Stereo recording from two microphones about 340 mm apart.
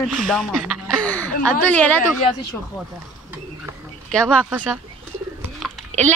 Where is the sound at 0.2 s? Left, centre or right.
Centre.